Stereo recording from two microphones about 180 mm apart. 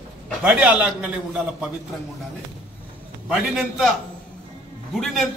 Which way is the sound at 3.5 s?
Centre (ahead or behind).